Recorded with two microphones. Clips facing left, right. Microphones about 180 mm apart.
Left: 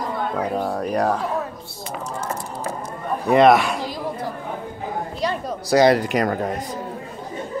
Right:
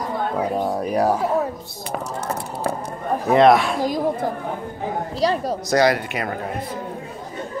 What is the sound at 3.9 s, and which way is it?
Chatter, 45° right (ahead or behind).